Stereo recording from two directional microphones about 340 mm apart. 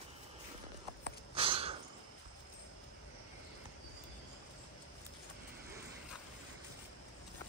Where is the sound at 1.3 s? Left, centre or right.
Centre.